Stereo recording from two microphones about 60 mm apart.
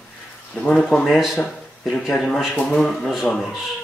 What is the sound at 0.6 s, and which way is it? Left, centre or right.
Speech, centre.